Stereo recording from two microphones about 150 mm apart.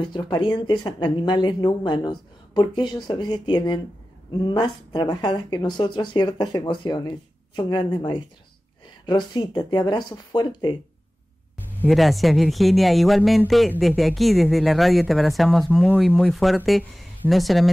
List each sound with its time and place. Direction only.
0.0 s speech: 30° left (ahead or behind)
11.9 s speech: centre (ahead or behind)